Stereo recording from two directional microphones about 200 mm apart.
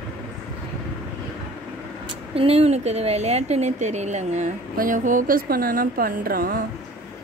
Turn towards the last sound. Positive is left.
turn(degrees=-45)  # may be behind; listen again after turning